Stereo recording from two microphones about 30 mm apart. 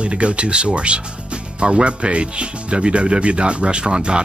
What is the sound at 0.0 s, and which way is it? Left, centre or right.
Speech, right.